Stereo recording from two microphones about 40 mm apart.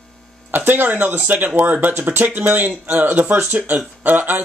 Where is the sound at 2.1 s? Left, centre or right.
Right.